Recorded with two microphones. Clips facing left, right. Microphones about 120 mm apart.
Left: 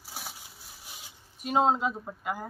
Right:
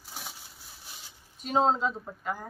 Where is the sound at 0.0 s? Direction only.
10° left (ahead or behind).